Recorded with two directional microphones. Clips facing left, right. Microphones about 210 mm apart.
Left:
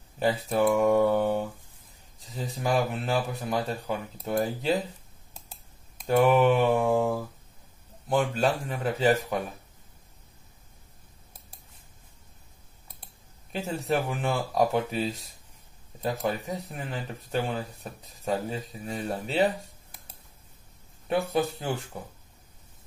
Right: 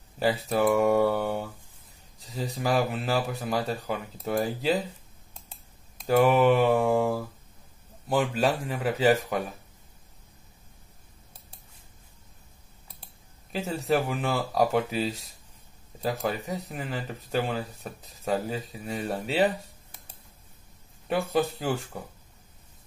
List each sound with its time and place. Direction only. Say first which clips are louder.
0.2 s speech: even; centre (ahead or behind)
5.5 s mantra: even; centre (ahead or behind)
8.1 s speech: even; 5° right (ahead or behind)
13.5 s speech: right 2 dB; centre (ahead or behind)
21.1 s speech: even; centre (ahead or behind)